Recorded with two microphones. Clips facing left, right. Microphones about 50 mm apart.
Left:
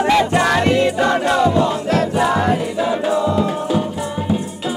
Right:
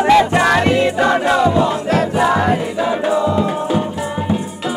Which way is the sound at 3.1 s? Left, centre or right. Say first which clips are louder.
Right 1 dB; centre.